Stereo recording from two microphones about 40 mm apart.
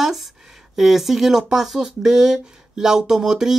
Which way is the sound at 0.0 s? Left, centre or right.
Centre.